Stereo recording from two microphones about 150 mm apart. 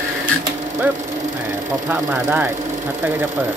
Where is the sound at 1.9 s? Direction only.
10° right (ahead or behind).